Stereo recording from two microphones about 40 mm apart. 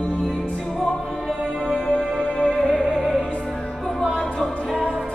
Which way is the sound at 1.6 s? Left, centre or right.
Left.